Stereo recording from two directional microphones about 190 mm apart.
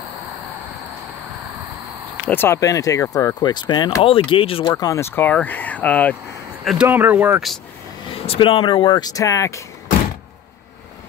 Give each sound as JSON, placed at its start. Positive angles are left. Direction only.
{"t": 2.2, "sound": "speech", "side_deg": 10}
{"t": 4.6, "sound": "speech", "side_deg": 15}
{"t": 6.6, "sound": "speech", "side_deg": -5}
{"t": 8.1, "sound": "speech", "side_deg": 30}